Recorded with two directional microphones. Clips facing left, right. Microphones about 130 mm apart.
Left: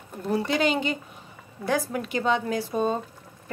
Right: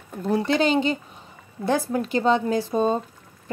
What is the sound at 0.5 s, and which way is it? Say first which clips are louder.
Speech: right 5 dB; 30° right (ahead or behind).